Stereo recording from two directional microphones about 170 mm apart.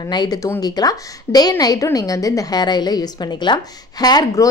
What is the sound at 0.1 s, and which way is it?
A woman's voice, 25° left (ahead or behind).